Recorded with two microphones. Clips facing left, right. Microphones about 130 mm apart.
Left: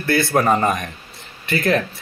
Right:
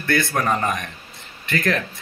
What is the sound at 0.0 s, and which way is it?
Mantra, 30° left (ahead or behind).